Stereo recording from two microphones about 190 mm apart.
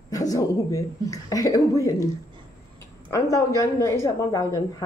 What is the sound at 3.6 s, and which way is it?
Speech, 15° left (ahead or behind).